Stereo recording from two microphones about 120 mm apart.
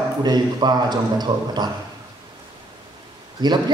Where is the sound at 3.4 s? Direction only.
35° right (ahead or behind).